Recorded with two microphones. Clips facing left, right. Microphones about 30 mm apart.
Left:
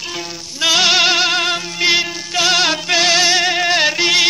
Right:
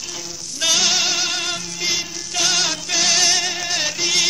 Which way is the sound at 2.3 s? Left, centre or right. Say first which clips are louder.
Left 5 dB; left.